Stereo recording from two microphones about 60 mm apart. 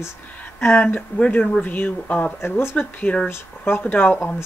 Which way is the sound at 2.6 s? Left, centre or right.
Left.